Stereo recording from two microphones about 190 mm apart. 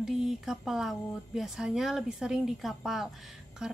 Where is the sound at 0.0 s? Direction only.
5° right (ahead or behind).